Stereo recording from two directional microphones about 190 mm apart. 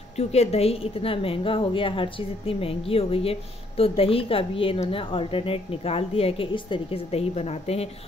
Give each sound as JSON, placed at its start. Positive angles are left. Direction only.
{"t": 0.2, "sound": "a woman's voice", "side_deg": 35}